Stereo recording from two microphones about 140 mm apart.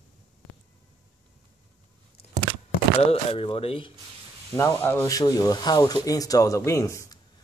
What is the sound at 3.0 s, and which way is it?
Speech, 45° left (ahead or behind).